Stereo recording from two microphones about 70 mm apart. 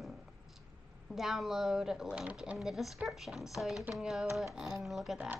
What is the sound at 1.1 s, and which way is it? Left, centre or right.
Speech, centre.